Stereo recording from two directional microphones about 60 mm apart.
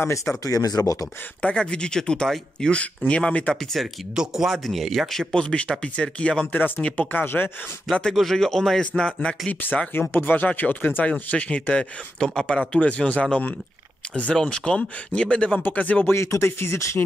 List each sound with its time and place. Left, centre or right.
0.4 s speech: left
1.4 s speech: centre
3.1 s speech: centre
3.8 s speech: centre
5.3 s speech: centre
6.4 s speech: left
7.9 s speech: centre
9.5 s speech: left
16.1 s speech: left